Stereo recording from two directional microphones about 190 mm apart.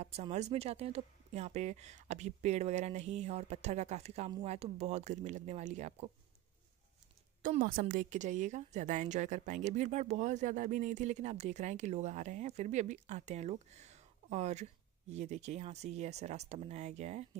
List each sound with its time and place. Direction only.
0.0 s speech: 35° right (ahead or behind)
7.4 s a woman's voice: 45° right (ahead or behind)